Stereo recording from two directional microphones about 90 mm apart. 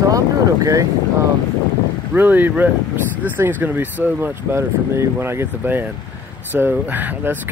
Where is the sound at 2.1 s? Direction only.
20° right (ahead or behind).